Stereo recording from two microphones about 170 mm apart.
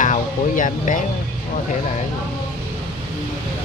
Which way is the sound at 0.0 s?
50° left (ahead or behind).